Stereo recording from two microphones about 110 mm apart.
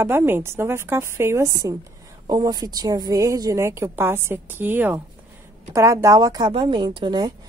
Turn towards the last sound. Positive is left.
turn(degrees=-45)  # may be behind; listen again after turning